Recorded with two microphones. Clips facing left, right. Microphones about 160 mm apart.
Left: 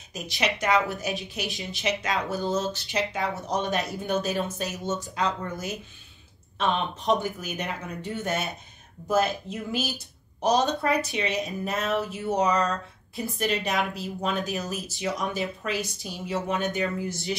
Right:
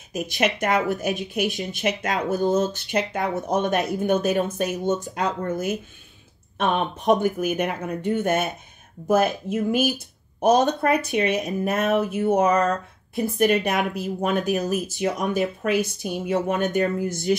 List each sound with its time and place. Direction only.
0.1 s speech: 55° right (ahead or behind)
11.6 s a sound: 55° right (ahead or behind)
12.0 s speech: 55° right (ahead or behind)